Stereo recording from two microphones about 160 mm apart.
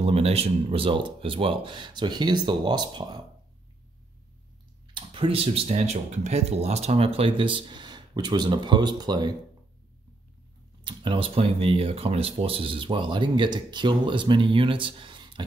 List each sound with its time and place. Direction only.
0.0 s speech: 40° right (ahead or behind)
4.9 s speech: 35° right (ahead or behind)
10.8 s speech: 30° right (ahead or behind)